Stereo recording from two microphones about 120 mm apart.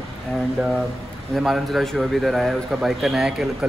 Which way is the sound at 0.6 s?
5° right (ahead or behind).